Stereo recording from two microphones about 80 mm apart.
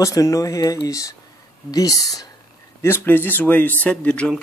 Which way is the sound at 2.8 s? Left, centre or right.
Left.